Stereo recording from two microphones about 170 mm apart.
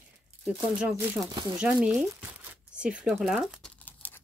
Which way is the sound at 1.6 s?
5° right (ahead or behind).